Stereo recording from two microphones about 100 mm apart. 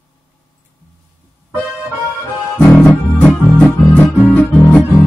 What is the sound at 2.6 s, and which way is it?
Music, 15° left (ahead or behind).